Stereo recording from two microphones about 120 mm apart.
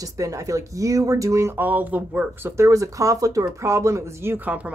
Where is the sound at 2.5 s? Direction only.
25° right (ahead or behind).